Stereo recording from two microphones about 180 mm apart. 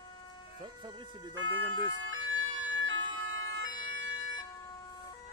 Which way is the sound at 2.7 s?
90° right.